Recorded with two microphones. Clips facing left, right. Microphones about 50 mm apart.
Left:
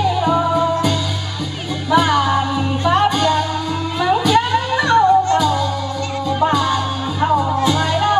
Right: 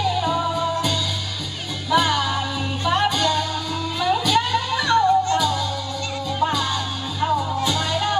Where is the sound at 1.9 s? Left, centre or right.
Left.